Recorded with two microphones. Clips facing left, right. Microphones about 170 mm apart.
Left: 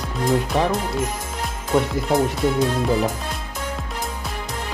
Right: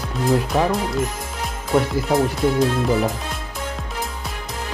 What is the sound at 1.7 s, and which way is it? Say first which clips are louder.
Speech: right 1 dB; centre (ahead or behind).